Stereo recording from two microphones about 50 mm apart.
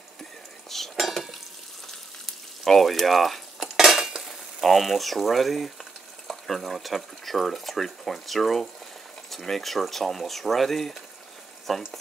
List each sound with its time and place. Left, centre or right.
0.7 s cutlery: centre
1.9 s frying: centre
3.7 s cutlery: centre
6.2 s speech: centre
11.7 s frying: centre